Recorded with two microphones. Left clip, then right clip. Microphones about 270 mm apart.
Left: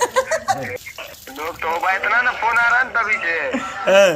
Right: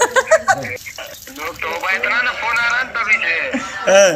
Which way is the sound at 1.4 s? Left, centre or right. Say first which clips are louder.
Left 1 dB; centre.